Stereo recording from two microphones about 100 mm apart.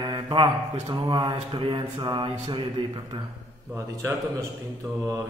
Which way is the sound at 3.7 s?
30° right (ahead or behind).